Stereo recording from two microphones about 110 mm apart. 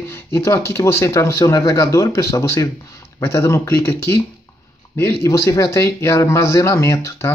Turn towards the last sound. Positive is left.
turn(degrees=25)  # may be behind; listen again after turning